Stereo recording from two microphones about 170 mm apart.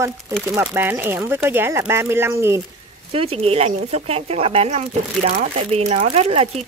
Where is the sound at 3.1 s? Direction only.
35° right (ahead or behind).